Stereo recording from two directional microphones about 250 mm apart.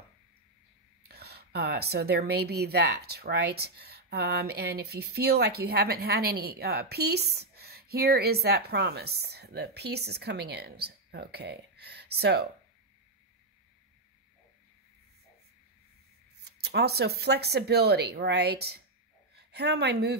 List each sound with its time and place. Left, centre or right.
1.0 s a woman's voice: right
16.3 s a woman's voice: right